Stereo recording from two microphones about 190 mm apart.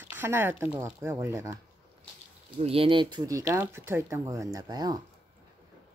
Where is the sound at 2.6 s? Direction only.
30° right (ahead or behind).